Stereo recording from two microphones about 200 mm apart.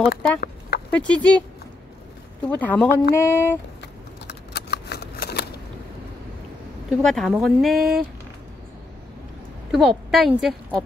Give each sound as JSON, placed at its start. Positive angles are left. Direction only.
{"t": 0.4, "sound": "a sound", "side_deg": 50}
{"t": 0.9, "sound": "speech", "side_deg": 5}
{"t": 2.5, "sound": "speech", "side_deg": 5}
{"t": 4.3, "sound": "shuffling cards", "side_deg": 55}
{"t": 6.9, "sound": "speech", "side_deg": 0}
{"t": 9.7, "sound": "speech", "side_deg": 0}